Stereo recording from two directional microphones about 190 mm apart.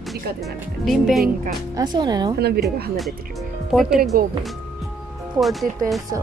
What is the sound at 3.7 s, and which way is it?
Speech, centre (ahead or behind).